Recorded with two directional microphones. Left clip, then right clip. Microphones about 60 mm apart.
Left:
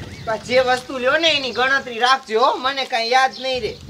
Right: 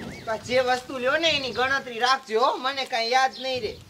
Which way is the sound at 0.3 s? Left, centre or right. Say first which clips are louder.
Left 6 dB; left.